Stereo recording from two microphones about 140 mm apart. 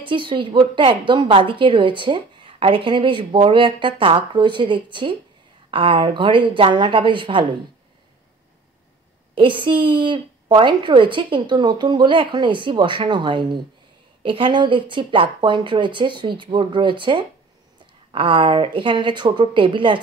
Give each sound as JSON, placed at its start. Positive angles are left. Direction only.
{"t": 0.0, "sound": "a woman's voice", "side_deg": -35}
{"t": 9.3, "sound": "a woman's voice", "side_deg": -35}